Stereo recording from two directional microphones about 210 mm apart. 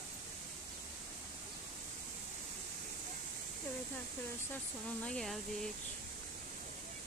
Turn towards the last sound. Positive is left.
turn(degrees=0)  # may be behind; listen again after turning